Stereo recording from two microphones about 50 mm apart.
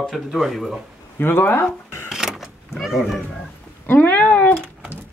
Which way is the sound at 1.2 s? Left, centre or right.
Left.